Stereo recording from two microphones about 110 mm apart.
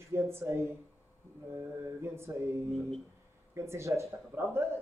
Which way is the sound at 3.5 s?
25° right (ahead or behind).